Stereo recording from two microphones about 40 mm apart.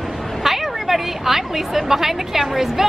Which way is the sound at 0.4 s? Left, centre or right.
Centre.